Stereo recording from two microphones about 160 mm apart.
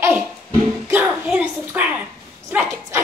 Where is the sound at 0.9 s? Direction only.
10° right (ahead or behind).